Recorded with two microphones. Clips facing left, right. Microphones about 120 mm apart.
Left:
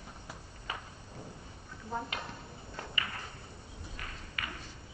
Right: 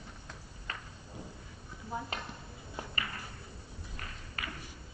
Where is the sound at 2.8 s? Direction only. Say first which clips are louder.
Right 1 dB; 15° right (ahead or behind).